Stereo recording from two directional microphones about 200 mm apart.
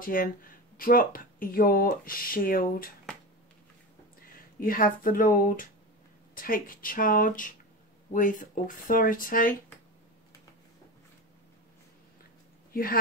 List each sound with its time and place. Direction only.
0.0 s speech: 45° left (ahead or behind)
4.6 s speech: 45° left (ahead or behind)
12.7 s speech: 45° left (ahead or behind)